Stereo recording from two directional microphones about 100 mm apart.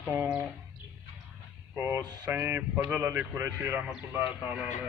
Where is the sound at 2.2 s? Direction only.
20° right (ahead or behind).